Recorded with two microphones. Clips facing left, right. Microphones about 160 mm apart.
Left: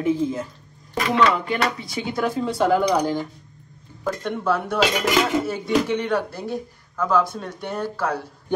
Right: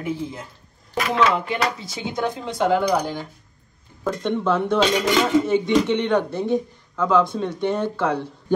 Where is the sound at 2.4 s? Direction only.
15° right (ahead or behind).